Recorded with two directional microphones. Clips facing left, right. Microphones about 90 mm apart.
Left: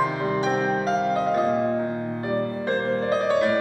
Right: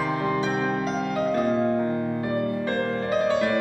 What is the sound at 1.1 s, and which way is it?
Music, 35° left (ahead or behind).